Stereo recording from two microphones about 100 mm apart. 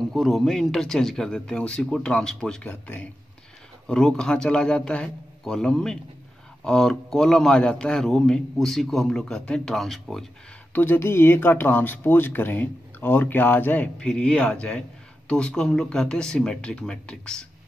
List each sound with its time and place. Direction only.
0.1 s a man's voice: centre (ahead or behind)
10.7 s speech: 20° left (ahead or behind)
13.9 s speech: 10° left (ahead or behind)